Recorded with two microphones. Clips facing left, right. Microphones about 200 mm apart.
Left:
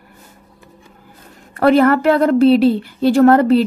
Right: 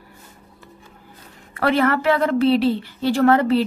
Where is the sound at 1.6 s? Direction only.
45° left (ahead or behind).